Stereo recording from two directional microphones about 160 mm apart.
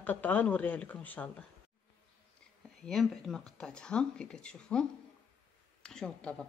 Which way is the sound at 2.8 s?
Centre (ahead or behind).